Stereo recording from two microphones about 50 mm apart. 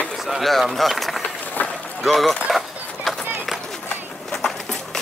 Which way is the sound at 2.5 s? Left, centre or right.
Centre.